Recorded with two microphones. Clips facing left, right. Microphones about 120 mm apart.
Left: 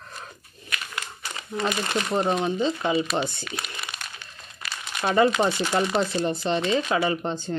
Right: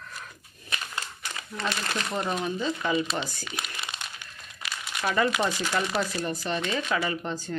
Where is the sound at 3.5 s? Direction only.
20° right (ahead or behind).